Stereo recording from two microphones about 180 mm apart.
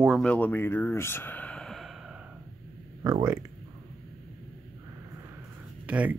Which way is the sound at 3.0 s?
20° right (ahead or behind).